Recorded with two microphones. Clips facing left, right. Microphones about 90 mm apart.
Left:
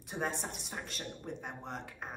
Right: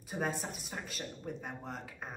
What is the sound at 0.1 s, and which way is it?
Speech, centre (ahead or behind).